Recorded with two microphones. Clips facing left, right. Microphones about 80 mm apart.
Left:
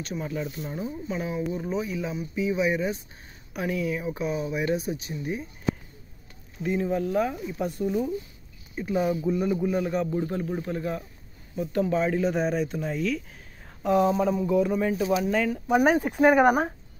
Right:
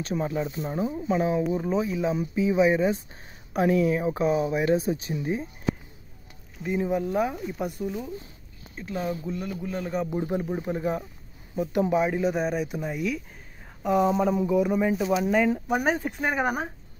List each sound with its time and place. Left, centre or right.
0.0 s speech: right
6.6 s speech: centre
8.7 s speech: centre
10.0 s speech: centre
15.7 s speech: centre